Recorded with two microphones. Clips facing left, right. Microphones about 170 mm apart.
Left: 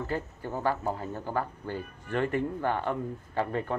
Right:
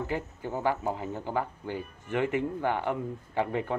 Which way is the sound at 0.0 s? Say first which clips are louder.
Even; 15° right (ahead or behind).